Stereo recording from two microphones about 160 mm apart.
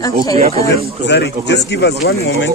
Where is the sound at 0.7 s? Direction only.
90° left.